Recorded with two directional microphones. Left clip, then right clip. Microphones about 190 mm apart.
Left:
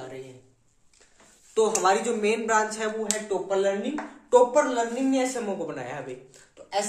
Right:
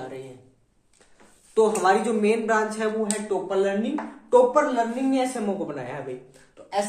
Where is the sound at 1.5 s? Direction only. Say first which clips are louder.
Right 2 dB; 15° left (ahead or behind).